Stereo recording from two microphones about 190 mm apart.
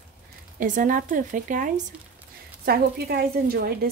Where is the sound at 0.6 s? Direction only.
45° right (ahead or behind).